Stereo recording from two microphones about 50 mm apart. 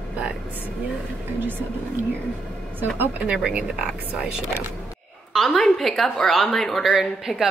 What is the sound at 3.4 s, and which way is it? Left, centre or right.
Speech, centre.